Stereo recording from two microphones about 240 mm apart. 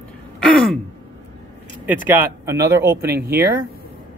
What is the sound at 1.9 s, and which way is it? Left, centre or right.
Speech, centre.